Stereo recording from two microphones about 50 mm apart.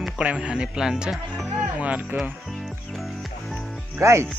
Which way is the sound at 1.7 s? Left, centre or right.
Right.